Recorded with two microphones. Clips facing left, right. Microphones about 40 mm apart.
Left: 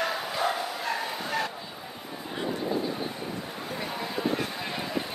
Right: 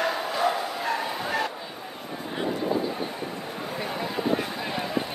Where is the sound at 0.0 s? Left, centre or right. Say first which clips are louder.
Right 3 dB; centre.